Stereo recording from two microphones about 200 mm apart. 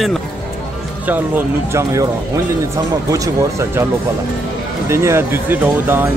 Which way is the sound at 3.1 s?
15° right (ahead or behind).